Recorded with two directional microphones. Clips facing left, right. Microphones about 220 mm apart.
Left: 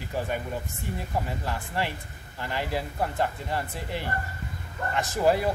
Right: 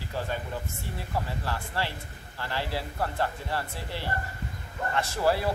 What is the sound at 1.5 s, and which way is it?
Speech, 15° left (ahead or behind).